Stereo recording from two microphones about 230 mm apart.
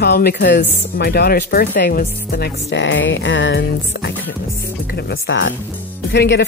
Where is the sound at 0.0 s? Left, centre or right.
Left.